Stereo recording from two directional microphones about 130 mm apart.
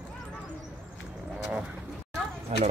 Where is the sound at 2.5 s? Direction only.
55° right (ahead or behind).